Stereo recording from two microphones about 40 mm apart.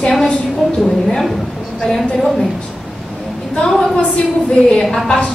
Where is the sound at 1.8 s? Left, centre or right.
Centre.